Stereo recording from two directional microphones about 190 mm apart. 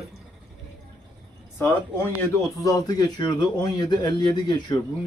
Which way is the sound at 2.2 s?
15° left (ahead or behind).